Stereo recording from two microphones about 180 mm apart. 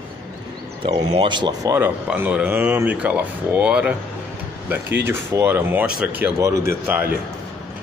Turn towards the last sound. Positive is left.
turn(degrees=-10)  # may be behind; listen again after turning